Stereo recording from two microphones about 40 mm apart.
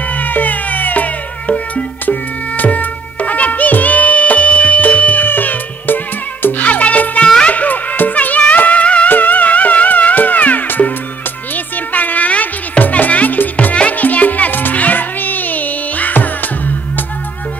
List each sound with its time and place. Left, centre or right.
0.1 s music: left
5.2 s music: left
6.6 s music: left
7.4 s a sound: left
8.5 s music: left
9.1 s music: left